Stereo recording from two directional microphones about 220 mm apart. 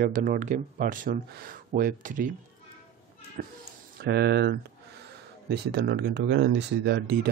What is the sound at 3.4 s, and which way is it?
Speech, 40° right (ahead or behind).